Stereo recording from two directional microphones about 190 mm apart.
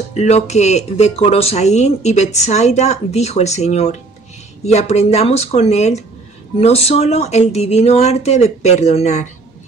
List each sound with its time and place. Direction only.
0.1 s speech: 35° left (ahead or behind)